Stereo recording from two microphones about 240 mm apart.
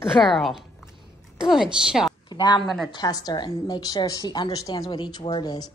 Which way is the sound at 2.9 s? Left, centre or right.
Centre.